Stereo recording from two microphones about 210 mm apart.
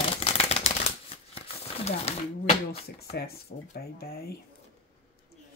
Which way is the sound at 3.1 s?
45° left (ahead or behind).